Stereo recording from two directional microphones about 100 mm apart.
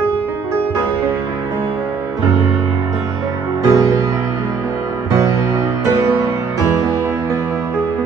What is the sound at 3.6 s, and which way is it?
Music, 40° right (ahead or behind).